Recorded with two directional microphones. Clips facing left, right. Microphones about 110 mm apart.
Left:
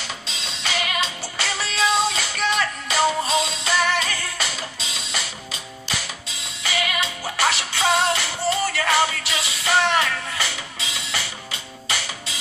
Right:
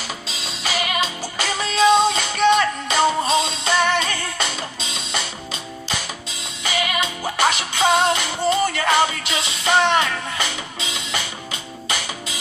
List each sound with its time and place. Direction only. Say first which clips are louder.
0.5 s music: right 2 dB; 10° right (ahead or behind)
6.6 s music: right 2 dB; 25° right (ahead or behind)